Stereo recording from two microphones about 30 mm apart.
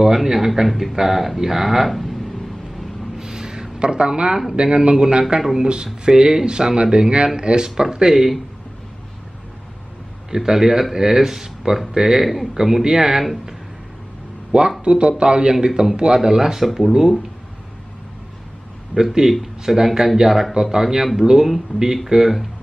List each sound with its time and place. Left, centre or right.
0.0 s speech: centre
3.2 s a sound: right
3.8 s speech: right
8.1 s speech: centre
10.3 s speech: centre
14.5 s speech: right; by 16.6 s centre
16.6 s speech: centre
19.2 s speech: centre